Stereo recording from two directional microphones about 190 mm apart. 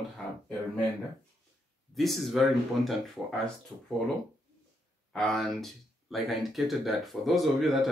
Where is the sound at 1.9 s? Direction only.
Centre (ahead or behind).